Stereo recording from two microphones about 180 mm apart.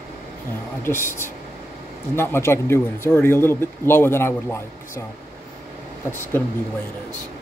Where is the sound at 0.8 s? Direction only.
15° left (ahead or behind).